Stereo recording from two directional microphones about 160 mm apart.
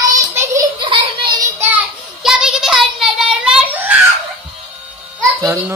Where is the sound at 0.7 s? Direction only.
30° right (ahead or behind).